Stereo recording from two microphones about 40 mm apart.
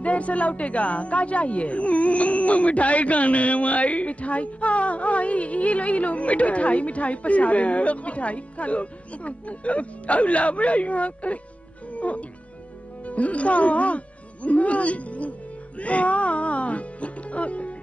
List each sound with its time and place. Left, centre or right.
0.0 s speech: left